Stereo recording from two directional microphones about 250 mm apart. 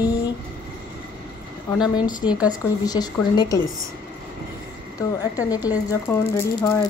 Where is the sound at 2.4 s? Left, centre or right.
Centre.